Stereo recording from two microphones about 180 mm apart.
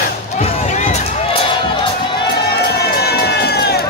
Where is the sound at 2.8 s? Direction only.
65° left (ahead or behind).